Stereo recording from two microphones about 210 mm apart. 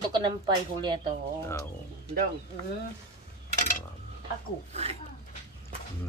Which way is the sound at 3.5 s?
40° left (ahead or behind).